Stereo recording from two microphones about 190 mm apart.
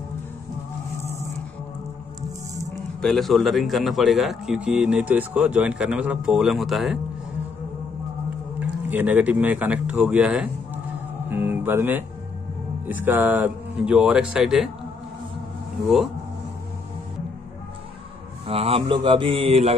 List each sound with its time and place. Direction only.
3.0 s speech: centre (ahead or behind)
8.5 s speech: 10° right (ahead or behind)
15.8 s speech: centre (ahead or behind)
18.5 s mantra: 30° right (ahead or behind)